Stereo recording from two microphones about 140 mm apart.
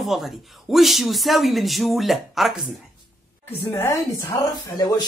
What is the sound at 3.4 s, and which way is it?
Speech, 15° left (ahead or behind).